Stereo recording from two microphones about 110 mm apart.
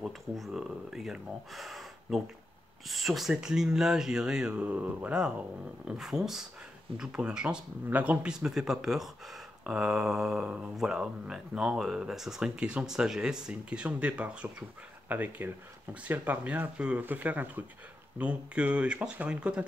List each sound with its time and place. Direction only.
0.0 s speech: 5° right (ahead or behind)